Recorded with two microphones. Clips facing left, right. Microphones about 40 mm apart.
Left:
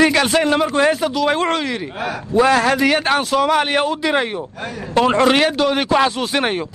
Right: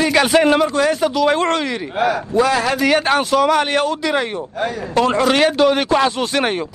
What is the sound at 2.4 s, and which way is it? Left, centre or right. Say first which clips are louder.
Speech: left 3 dB; left.